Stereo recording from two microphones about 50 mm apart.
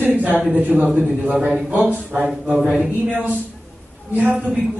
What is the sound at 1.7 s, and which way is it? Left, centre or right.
Speech, right.